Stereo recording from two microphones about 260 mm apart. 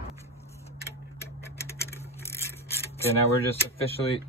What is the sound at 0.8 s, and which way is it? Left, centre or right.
Tick-tock, centre.